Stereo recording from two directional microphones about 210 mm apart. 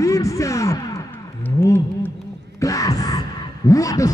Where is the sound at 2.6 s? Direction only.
15° left (ahead or behind).